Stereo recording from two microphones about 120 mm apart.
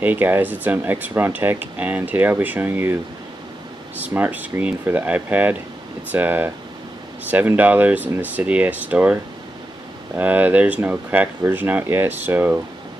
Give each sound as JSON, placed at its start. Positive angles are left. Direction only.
{"t": 0.0, "sound": "speech", "side_deg": -15}
{"t": 4.0, "sound": "speech", "side_deg": -15}